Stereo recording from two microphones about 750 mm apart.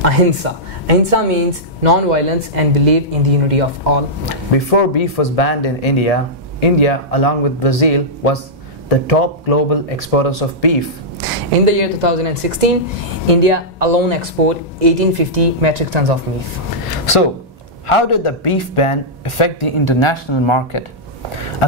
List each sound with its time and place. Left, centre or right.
0.0 s speech: right
4.5 s speech: left
11.2 s speech: right
17.8 s speech: left